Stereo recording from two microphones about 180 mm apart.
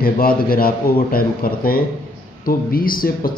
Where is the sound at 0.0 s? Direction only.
55° left (ahead or behind).